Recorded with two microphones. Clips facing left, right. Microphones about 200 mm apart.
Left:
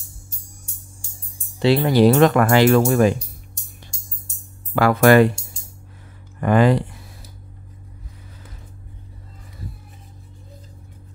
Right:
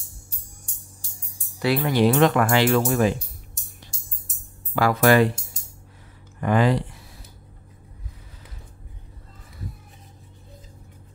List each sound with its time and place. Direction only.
1.6 s speech: 30° left (ahead or behind); by 3.2 s 50° left (ahead or behind)
4.7 s speech: 55° left (ahead or behind)
6.4 s speech: 50° left (ahead or behind)